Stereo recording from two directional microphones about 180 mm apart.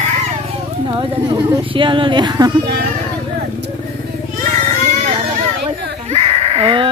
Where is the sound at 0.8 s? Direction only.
25° right (ahead or behind).